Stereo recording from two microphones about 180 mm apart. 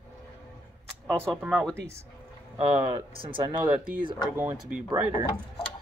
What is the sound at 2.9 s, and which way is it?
Speech, 25° right (ahead or behind).